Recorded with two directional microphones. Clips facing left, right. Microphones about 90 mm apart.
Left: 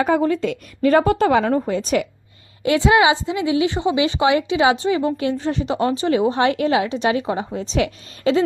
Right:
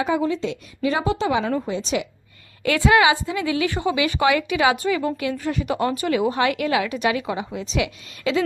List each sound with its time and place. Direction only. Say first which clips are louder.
0.0 s a woman's voice: left 4 dB; 50° left (ahead or behind)
2.6 s a woman's voice: left 2 dB; 20° left (ahead or behind)